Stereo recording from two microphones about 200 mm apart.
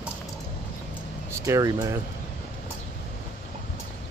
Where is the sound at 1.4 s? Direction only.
15° right (ahead or behind).